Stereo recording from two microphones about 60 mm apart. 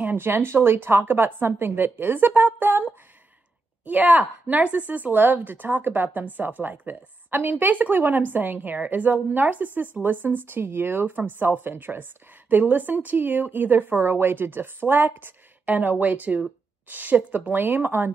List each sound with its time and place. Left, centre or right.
0.0 s speech: right